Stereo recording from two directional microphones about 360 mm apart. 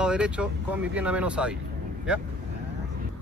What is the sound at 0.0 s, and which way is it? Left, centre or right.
Speech, centre.